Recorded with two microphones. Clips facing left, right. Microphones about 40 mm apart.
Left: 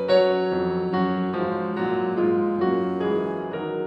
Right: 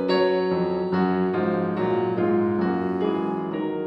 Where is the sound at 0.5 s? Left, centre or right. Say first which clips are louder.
Even; centre.